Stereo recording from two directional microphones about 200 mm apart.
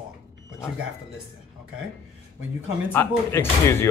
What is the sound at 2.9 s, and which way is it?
Speech, 10° left (ahead or behind).